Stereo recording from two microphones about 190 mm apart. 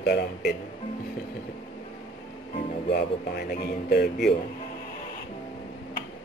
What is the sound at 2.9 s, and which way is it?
A man's voice, 55° left (ahead or behind).